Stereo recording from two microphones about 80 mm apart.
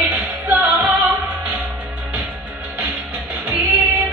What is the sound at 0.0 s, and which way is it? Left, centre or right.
Music, centre.